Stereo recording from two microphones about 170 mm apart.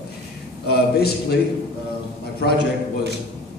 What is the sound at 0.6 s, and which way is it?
Speech, 70° left (ahead or behind).